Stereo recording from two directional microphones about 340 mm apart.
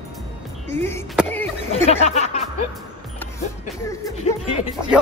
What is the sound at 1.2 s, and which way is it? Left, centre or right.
Speech, centre.